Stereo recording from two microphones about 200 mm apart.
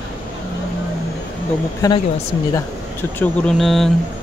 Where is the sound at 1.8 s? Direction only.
20° left (ahead or behind).